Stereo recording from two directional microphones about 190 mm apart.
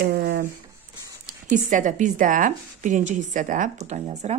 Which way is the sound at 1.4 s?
40° right (ahead or behind).